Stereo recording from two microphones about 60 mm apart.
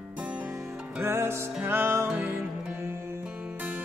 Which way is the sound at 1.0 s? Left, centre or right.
Right.